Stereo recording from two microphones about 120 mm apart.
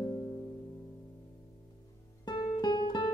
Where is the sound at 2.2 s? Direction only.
35° left (ahead or behind).